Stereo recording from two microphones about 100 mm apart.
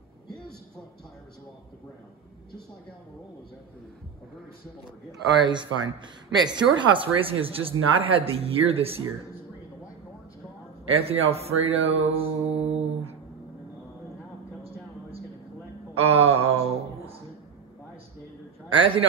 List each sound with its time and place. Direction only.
5.4 s speech: 50° right (ahead or behind); by 9.0 s 75° right (ahead or behind)
10.9 s speech: 75° right (ahead or behind); by 13.1 s 90° right
14.6 s a sound: 75° right (ahead or behind)
16.0 s speech: 75° right (ahead or behind)
18.7 s speech: 60° right (ahead or behind)